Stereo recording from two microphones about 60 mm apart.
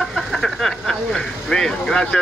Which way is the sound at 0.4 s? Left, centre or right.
Centre.